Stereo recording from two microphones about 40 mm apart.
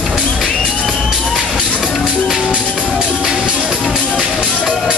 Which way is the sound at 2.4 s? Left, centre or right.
Right.